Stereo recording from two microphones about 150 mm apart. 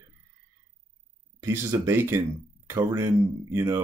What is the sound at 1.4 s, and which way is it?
Speech, 15° right (ahead or behind).